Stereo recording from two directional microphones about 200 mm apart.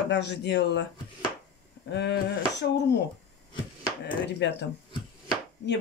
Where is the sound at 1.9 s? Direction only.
60° left (ahead or behind).